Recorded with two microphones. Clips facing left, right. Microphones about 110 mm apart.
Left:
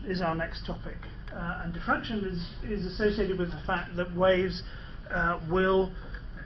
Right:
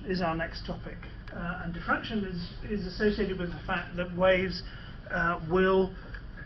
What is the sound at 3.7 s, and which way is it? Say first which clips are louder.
Speech: left 2 dB; 25° left (ahead or behind).